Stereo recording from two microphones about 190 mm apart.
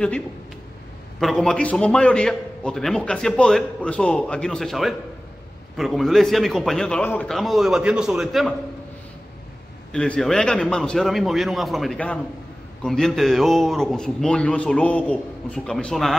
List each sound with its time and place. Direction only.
1.2 s a man's voice: centre (ahead or behind)
9.9 s a man's voice: 5° left (ahead or behind)